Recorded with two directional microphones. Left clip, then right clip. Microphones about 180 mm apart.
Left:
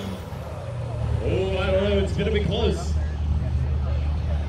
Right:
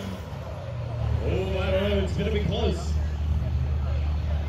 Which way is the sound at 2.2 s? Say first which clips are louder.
Left 4 dB; 5° left (ahead or behind).